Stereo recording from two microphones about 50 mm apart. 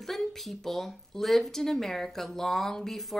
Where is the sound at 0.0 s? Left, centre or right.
Centre.